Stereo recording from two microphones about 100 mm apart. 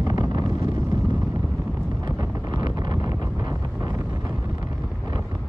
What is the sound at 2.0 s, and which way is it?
Wind noise, 45° right (ahead or behind).